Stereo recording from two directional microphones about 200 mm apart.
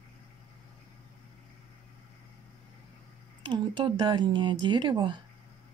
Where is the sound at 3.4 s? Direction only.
25° right (ahead or behind).